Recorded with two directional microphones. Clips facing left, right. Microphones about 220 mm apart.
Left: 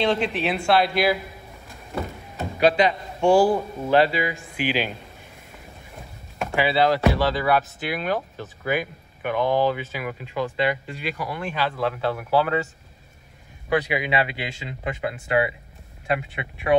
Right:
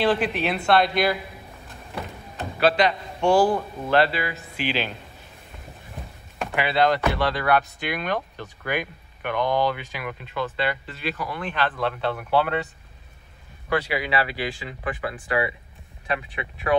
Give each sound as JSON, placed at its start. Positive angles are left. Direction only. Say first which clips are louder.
{"t": 0.0, "sound": "speech", "louder": "even", "side_deg": -5}
{"t": 2.6, "sound": "a man's voice", "louder": "left 1 dB", "side_deg": 10}
{"t": 6.3, "sound": "speech", "louder": "left 2 dB", "side_deg": 0}
{"t": 13.7, "sound": "speech", "louder": "left 2 dB", "side_deg": 20}